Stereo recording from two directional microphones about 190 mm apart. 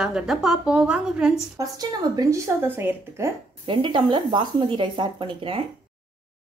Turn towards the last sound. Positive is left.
turn(degrees=-25)  # may be behind; listen again after turning